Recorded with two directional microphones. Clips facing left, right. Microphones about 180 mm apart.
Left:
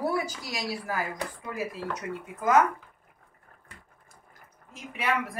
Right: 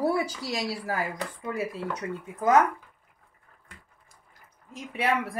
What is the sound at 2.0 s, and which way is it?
Speech, 15° left (ahead or behind).